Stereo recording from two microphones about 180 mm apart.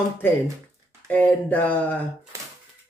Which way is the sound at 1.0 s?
10° left (ahead or behind).